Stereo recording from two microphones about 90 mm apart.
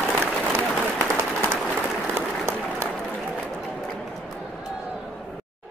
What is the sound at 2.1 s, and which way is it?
Applause, 30° right (ahead or behind).